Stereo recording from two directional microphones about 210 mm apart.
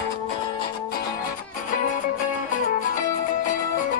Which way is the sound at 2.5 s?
40° left (ahead or behind).